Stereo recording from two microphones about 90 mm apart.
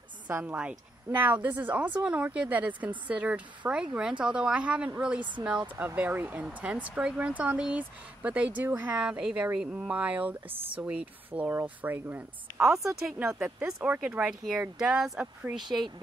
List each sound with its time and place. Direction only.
0.4 s speech: 10° right (ahead or behind)
12.6 s speech: 5° right (ahead or behind)